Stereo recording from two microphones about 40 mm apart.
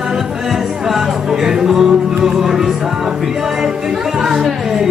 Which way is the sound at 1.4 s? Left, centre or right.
Centre.